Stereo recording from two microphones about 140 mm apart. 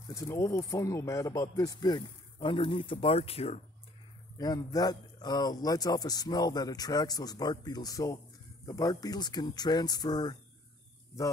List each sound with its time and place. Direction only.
0.1 s speech: 20° left (ahead or behind); by 3.6 s 45° left (ahead or behind)
4.4 s speech: 25° left (ahead or behind)